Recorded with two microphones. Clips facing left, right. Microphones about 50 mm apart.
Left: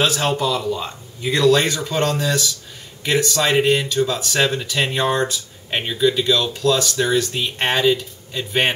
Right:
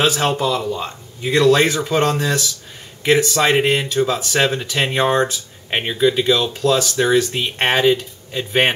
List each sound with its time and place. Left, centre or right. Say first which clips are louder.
0.0 s speech: right 2 dB; centre